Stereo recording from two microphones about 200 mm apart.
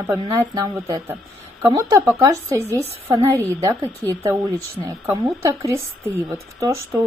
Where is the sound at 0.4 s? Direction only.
15° right (ahead or behind).